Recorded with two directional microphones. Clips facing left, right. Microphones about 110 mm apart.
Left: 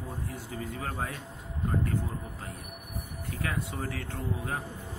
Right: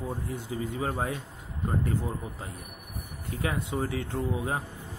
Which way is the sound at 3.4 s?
25° right (ahead or behind).